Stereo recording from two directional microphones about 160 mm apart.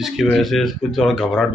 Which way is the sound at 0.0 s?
Centre (ahead or behind).